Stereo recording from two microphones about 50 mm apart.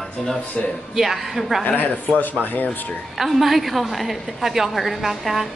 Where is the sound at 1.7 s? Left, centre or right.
Left.